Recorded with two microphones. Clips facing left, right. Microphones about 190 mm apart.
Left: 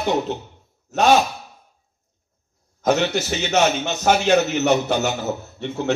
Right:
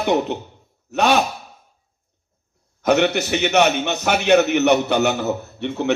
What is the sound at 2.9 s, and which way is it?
A man's voice, 60° right (ahead or behind).